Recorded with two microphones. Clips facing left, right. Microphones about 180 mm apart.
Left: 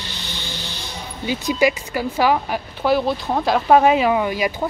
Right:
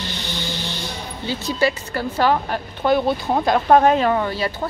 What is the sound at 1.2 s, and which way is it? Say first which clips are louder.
Speech: left 2 dB; 15° left (ahead or behind).